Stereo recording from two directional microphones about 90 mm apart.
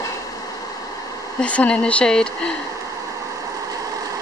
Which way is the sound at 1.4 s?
15° left (ahead or behind).